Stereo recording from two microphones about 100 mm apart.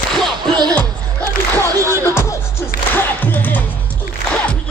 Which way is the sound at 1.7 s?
30° right (ahead or behind).